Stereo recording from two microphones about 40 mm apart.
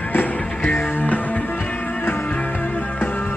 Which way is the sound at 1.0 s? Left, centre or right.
Left.